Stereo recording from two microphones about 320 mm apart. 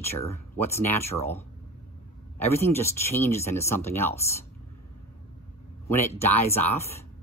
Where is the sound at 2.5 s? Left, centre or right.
Centre.